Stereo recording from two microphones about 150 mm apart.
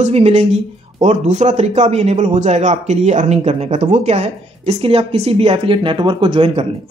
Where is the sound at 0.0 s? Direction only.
45° right (ahead or behind).